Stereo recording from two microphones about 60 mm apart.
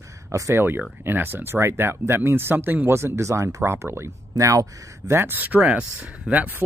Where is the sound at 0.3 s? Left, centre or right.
Right.